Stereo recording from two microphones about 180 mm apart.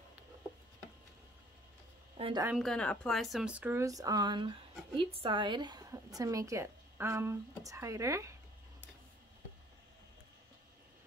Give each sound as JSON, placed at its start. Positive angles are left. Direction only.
{"t": 2.1, "sound": "a woman's voice", "side_deg": -30}
{"t": 2.4, "sound": "speech", "side_deg": 0}